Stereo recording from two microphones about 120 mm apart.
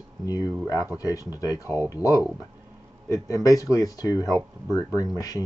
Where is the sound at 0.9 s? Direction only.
30° left (ahead or behind).